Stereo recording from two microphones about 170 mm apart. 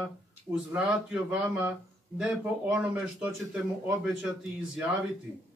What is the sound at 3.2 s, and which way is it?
Speech, 10° right (ahead or behind).